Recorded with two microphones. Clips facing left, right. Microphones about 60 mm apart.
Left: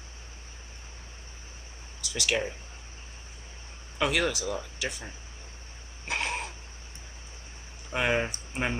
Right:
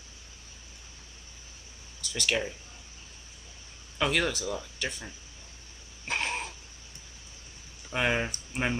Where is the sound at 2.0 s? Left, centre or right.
Centre.